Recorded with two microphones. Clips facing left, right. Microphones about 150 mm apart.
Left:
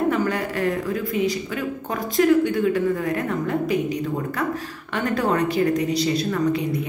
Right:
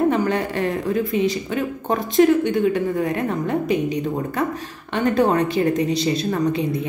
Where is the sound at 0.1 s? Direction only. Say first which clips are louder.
Right 2 dB; 25° right (ahead or behind).